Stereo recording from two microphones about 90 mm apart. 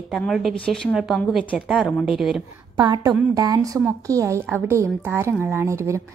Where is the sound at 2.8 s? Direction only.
45° right (ahead or behind).